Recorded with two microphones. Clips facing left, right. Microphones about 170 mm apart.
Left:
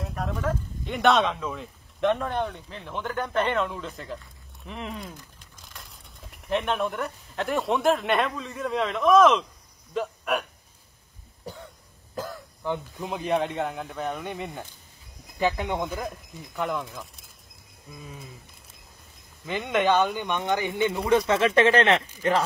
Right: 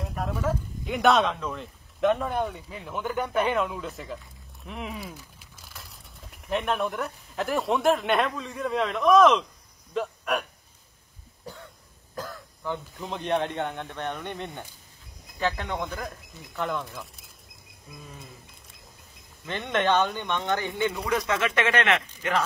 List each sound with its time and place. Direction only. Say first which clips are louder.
0.0 s a man's voice: even; centre (ahead or behind)
12.2 s speech: left 3 dB; 15° left (ahead or behind)
15.3 s speech: left 3 dB; 15° left (ahead or behind)
16.5 s speech: left 1 dB; 5° left (ahead or behind)
19.4 s speech: left 2 dB; 5° left (ahead or behind); by 22.4 s 35° left (ahead or behind)